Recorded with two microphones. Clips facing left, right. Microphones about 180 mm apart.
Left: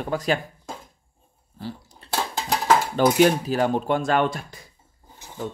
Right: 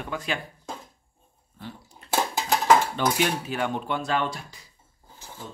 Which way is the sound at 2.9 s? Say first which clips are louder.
Left 8 dB; 40° left (ahead or behind).